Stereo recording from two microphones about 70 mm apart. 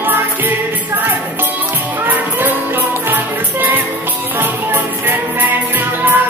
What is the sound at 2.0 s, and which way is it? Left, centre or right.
Music, right.